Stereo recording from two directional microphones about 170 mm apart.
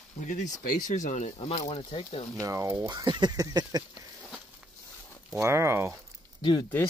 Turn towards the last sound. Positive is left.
turn(degrees=25)  # may be behind; listen again after turning